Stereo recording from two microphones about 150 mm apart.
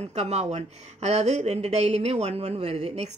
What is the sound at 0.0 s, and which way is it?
A woman's voice, 45° right (ahead or behind).